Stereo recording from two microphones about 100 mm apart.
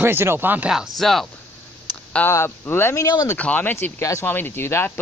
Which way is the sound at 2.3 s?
25° left (ahead or behind).